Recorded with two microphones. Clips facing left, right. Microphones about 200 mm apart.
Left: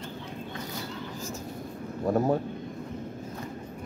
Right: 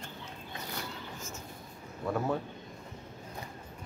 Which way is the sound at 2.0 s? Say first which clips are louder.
Left 7 dB; 40° left (ahead or behind).